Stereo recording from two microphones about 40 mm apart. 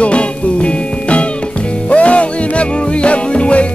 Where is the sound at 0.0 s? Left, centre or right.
Left.